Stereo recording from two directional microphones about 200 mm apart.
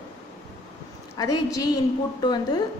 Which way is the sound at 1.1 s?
20° left (ahead or behind).